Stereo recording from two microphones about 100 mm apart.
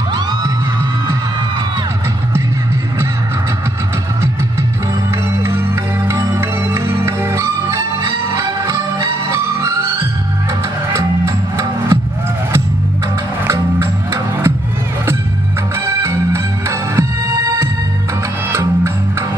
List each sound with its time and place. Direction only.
0.1 s music: 45° right (ahead or behind)
5.4 s music: 25° right (ahead or behind)
13.5 s music: 25° right (ahead or behind)
15.8 s music: 30° right (ahead or behind)